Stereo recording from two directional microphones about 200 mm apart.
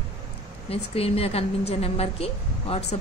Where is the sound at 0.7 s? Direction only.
30° left (ahead or behind).